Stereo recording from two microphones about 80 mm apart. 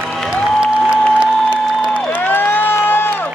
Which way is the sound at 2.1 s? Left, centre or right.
Left.